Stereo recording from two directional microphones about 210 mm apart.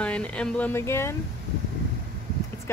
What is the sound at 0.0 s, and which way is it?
Speech, 5° left (ahead or behind).